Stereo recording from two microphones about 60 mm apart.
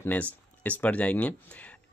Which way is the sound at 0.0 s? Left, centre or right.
Left.